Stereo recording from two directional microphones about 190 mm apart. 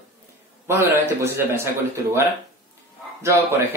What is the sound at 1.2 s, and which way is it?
Speech, 10° right (ahead or behind).